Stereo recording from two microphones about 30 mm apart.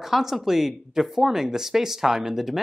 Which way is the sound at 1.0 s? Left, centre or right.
Centre.